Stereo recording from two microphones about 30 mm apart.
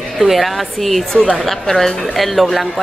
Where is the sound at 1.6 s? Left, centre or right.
Centre.